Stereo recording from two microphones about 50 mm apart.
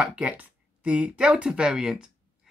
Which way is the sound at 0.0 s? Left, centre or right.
Right.